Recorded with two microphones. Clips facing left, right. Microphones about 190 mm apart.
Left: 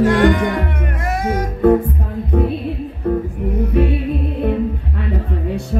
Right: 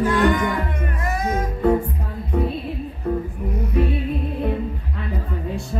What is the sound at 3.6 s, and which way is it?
Music, 60° left (ahead or behind).